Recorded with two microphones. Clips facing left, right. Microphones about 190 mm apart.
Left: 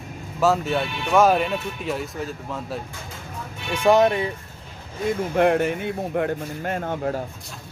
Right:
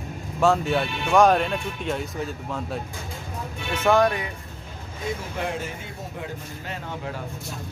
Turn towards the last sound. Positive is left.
turn(degrees=50)  # may be behind; listen again after turning